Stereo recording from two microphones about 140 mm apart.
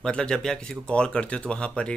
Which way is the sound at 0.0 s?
5° left (ahead or behind).